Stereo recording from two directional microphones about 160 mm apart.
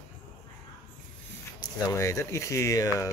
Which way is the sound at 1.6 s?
20° left (ahead or behind).